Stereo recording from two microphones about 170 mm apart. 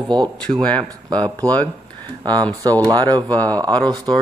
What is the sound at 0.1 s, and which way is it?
Speech, 25° right (ahead or behind).